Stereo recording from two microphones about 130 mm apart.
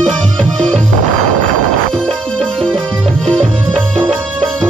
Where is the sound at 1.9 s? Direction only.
5° left (ahead or behind).